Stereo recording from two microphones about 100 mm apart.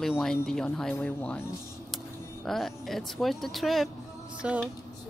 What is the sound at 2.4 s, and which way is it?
Speech, centre (ahead or behind).